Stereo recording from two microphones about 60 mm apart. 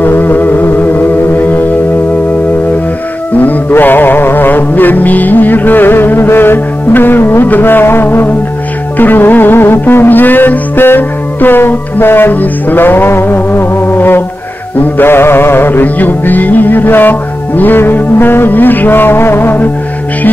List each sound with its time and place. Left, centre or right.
0.0 s music: left
3.3 s music: left